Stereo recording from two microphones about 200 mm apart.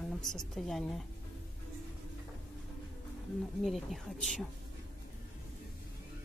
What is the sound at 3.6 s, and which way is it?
Speech, centre (ahead or behind).